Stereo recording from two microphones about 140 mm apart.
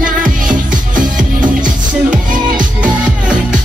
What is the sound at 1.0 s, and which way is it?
Music, 70° right (ahead or behind).